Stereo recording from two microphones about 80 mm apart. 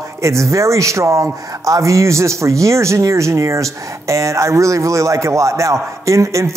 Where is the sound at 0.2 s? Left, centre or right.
Right.